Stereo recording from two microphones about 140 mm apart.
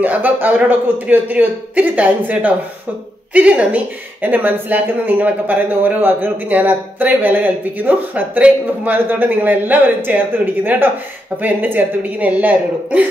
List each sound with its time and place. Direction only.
0.0 s a woman's voice: 15° right (ahead or behind)